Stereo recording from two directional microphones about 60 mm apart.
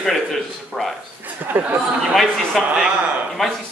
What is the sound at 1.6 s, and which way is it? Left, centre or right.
Speech, right.